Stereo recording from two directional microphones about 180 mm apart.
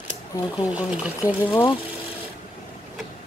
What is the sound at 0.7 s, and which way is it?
Speech, 5° right (ahead or behind).